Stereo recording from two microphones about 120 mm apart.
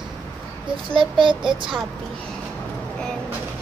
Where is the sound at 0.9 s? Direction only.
45° right (ahead or behind).